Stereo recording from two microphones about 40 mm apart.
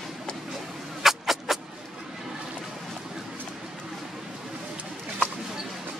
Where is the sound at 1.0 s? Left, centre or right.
Centre.